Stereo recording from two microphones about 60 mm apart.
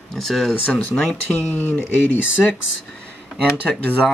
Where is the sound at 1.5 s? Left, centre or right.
Left.